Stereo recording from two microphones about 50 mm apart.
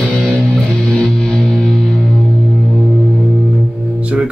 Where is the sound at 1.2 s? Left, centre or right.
Centre.